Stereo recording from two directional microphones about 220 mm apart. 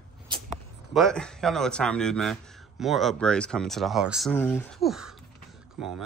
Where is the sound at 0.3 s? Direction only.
20° right (ahead or behind).